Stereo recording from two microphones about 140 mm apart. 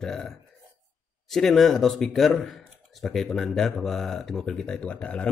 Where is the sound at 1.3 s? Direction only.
Centre (ahead or behind).